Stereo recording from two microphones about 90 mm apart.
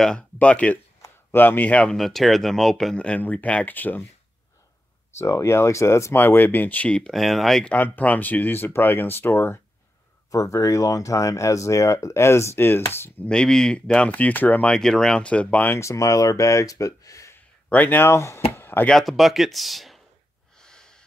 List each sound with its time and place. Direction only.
0.0 s speech: 10° left (ahead or behind)
2.0 s speech: centre (ahead or behind); by 4.0 s 20° left (ahead or behind)
5.2 s speech: 35° left (ahead or behind); by 7.7 s 5° left (ahead or behind)
7.7 s speech: 20° left (ahead or behind)
10.3 s speech: 40° left (ahead or behind)
13.3 s speech: 10° left (ahead or behind)
15.8 s speech: 35° left (ahead or behind)
17.6 s speech: 20° left (ahead or behind)
18.6 s chop: 25° left (ahead or behind)
18.9 s speech: centre (ahead or behind)
20.5 s snort: 10° left (ahead or behind)